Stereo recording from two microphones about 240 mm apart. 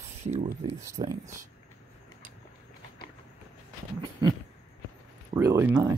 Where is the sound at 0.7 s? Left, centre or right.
Centre.